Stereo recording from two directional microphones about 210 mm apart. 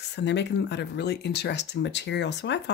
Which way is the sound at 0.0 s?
55° left (ahead or behind).